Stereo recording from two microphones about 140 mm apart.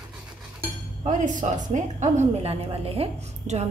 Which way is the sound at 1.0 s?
60° right (ahead or behind).